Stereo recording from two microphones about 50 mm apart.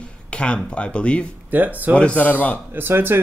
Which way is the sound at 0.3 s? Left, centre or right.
Left.